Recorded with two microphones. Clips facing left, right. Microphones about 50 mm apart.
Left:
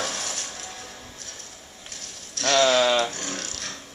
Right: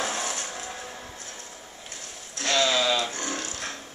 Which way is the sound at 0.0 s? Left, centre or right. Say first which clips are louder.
Right 2 dB; right.